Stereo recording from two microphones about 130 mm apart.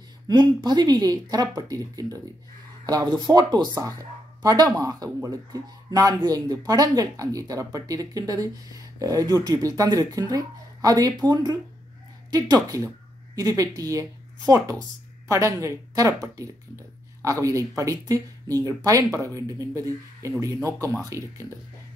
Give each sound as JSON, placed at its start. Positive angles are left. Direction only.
{"t": 0.3, "sound": "speech", "side_deg": -35}
{"t": 12.3, "sound": "speech", "side_deg": -30}